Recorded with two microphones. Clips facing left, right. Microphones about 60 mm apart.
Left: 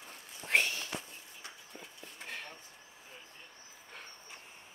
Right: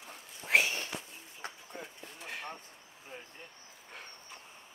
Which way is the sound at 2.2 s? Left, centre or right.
Centre.